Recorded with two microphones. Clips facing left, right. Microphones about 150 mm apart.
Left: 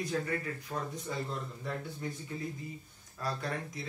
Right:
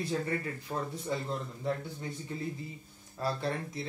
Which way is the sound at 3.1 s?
30° right (ahead or behind).